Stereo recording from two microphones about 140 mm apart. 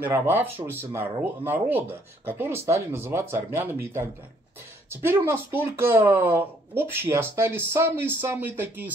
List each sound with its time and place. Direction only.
0.0 s speech: 15° right (ahead or behind)